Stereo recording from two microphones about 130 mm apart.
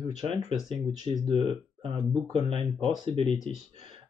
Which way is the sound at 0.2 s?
35° right (ahead or behind).